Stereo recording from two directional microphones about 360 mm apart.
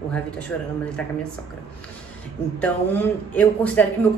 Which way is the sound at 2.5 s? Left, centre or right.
Centre.